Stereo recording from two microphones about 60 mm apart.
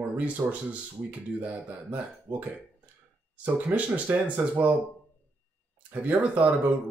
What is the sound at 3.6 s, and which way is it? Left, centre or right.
Speech, right.